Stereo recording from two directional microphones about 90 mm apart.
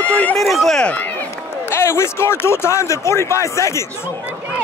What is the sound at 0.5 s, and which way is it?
Speech, centre (ahead or behind).